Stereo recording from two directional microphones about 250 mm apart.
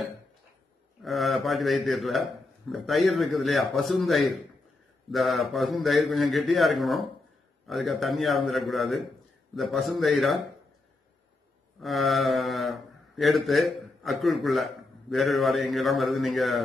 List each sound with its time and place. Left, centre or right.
1.0 s speech: centre
11.8 s speech: centre